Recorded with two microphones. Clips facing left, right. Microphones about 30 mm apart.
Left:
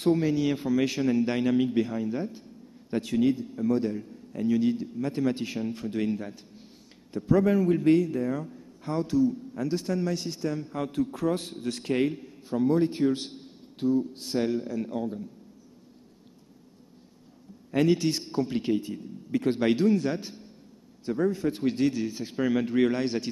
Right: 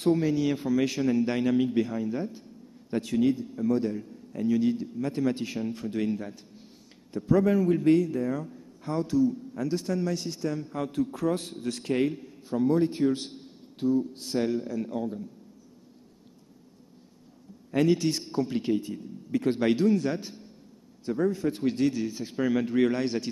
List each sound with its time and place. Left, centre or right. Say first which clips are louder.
0.0 s a man's voice: even; centre
17.6 s a man's voice: even; centre